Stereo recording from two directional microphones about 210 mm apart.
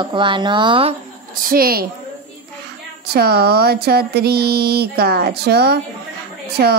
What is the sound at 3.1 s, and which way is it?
Speech, 50° right (ahead or behind).